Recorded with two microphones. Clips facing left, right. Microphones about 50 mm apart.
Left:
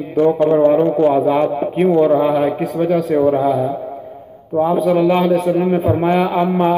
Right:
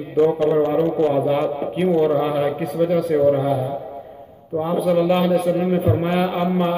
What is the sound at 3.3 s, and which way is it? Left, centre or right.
Speech, centre.